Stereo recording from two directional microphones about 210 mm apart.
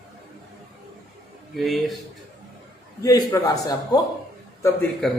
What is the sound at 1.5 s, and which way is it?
Speech, centre (ahead or behind).